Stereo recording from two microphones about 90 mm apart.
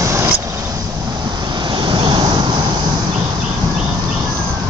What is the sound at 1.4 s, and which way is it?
Vehicle, 55° right (ahead or behind).